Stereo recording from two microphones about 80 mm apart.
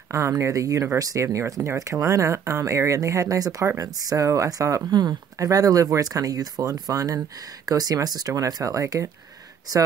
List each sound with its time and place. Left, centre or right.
0.1 s speech: right